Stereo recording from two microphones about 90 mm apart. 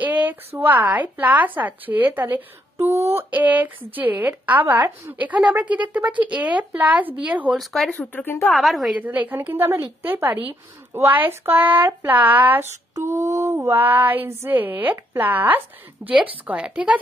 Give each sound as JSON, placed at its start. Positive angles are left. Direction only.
{"t": 0.0, "sound": "a sound", "side_deg": -20}
{"t": 0.6, "sound": "a woman's voice", "side_deg": -20}
{"t": 7.5, "sound": "speech", "side_deg": 5}
{"t": 8.0, "sound": "speech", "side_deg": 20}
{"t": 8.5, "sound": "speech", "side_deg": 0}
{"t": 8.9, "sound": "a woman's voice", "side_deg": -20}
{"t": 12.9, "sound": "a woman's voice", "side_deg": -35}